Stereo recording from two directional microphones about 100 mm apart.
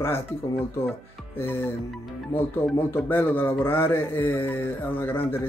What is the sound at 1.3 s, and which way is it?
Speech, 20° left (ahead or behind).